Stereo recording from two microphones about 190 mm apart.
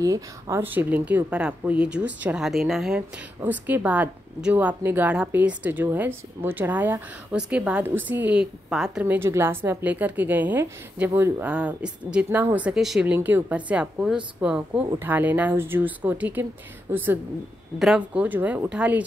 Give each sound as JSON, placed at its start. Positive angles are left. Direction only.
{"t": 0.0, "sound": "speech", "side_deg": -15}